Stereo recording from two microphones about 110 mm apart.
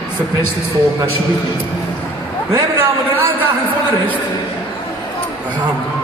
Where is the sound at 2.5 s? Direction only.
20° right (ahead or behind).